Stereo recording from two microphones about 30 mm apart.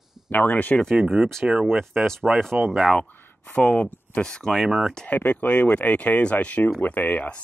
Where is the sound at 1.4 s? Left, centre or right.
Right.